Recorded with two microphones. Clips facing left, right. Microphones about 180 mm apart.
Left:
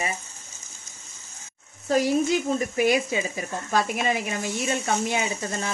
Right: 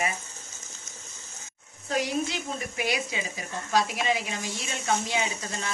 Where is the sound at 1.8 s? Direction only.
40° left (ahead or behind).